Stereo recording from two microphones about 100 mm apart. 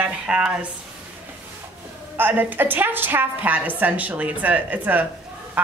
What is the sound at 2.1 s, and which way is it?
A woman's voice, 20° right (ahead or behind).